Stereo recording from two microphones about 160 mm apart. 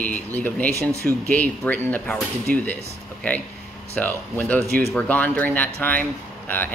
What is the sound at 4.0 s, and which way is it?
Speech, 10° left (ahead or behind).